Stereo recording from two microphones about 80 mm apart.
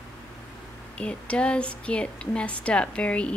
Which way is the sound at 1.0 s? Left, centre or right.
Centre.